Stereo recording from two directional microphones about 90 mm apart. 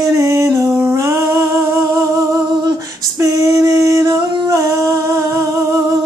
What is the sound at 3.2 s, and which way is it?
Singing, 35° right (ahead or behind).